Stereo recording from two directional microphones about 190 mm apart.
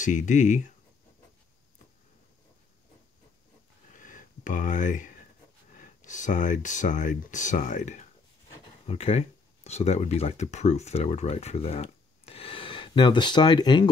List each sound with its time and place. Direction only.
0.0 s speech: 40° left (ahead or behind)
3.9 s a sound: 45° left (ahead or behind)
5.8 s speech: 40° left (ahead or behind); by 13.8 s 20° left (ahead or behind)